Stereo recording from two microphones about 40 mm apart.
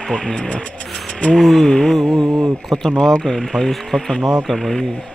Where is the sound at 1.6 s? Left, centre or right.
Centre.